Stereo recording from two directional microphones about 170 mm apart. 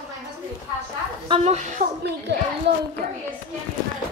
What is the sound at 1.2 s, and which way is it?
Speech, 40° right (ahead or behind).